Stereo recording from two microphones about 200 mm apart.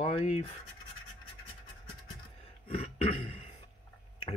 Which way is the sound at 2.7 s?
30° left (ahead or behind).